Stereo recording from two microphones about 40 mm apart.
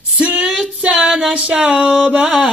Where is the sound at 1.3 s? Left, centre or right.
Right.